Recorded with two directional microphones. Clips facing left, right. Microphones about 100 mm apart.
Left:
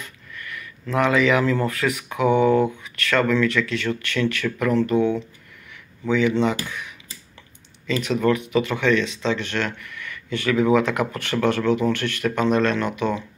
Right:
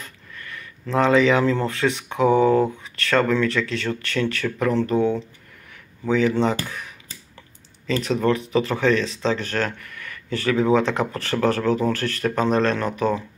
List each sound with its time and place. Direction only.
0.0 s speech: 30° right (ahead or behind)